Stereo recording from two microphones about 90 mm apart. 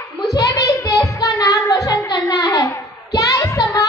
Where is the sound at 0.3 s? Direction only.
45° left (ahead or behind).